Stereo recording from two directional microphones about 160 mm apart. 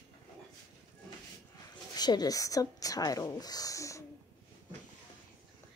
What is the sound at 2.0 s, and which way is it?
Speech, 25° left (ahead or behind).